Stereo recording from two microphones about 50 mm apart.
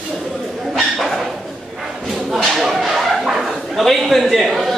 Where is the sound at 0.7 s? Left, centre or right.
Centre.